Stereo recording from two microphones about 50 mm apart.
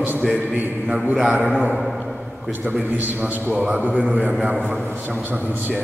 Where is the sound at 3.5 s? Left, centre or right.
Right.